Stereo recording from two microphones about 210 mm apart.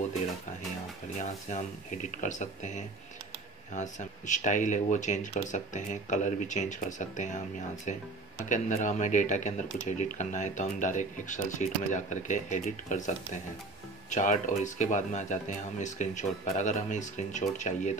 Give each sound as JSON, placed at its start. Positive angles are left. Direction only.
{"t": 1.1, "sound": "speech", "side_deg": 35}
{"t": 8.5, "sound": "speech", "side_deg": 35}